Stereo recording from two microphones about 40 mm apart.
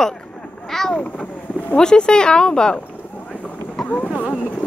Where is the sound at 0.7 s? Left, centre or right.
Centre.